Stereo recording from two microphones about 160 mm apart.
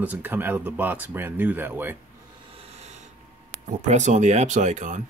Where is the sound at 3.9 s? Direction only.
50° right (ahead or behind).